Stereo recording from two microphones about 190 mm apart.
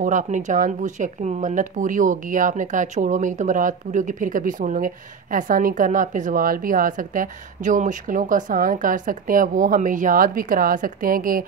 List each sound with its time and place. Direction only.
0.0 s speech: 40° right (ahead or behind)